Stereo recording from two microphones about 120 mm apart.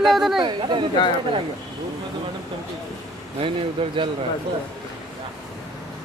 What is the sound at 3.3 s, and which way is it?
Speech, 45° right (ahead or behind).